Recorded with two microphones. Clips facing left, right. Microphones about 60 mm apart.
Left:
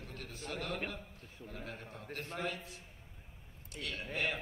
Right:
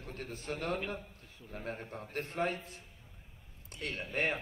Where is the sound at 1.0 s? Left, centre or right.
Left.